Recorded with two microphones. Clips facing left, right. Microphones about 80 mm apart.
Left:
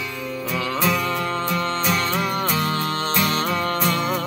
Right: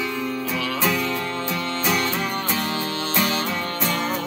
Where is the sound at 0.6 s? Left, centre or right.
Left.